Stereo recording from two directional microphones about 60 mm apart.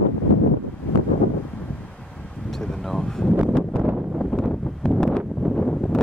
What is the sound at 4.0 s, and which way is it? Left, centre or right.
Wind noise, centre.